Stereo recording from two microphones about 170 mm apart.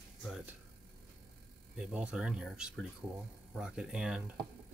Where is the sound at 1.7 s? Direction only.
5° right (ahead or behind).